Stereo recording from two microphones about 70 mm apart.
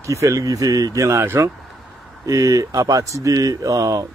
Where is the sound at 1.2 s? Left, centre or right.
Right.